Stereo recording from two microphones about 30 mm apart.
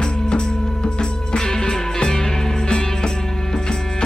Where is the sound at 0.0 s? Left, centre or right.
Left.